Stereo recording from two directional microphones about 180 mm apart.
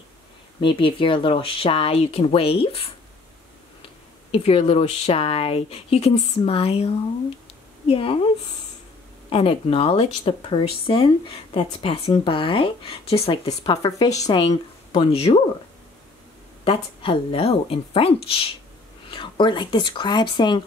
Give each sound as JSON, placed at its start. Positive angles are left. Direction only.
{"t": 0.6, "sound": "speech", "side_deg": 30}
{"t": 4.3, "sound": "a woman's voice", "side_deg": 35}
{"t": 9.3, "sound": "speech", "side_deg": 30}
{"t": 16.6, "sound": "speech", "side_deg": 30}